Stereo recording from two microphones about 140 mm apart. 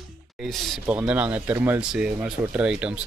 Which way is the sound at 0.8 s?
10° right (ahead or behind).